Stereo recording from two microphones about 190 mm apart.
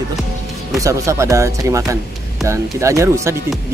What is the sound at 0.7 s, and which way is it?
Speech, 15° right (ahead or behind).